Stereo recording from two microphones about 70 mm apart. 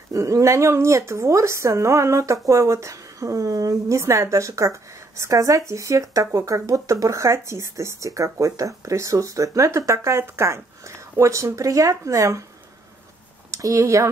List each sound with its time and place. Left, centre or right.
0.1 s speech: right
13.5 s speech: right